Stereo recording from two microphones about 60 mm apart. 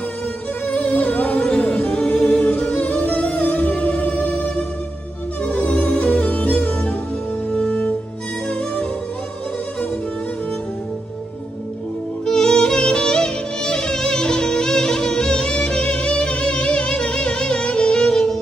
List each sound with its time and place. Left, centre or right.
0.7 s music: left
12.3 s music: centre